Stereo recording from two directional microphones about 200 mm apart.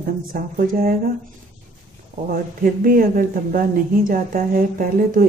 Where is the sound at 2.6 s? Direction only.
45° right (ahead or behind).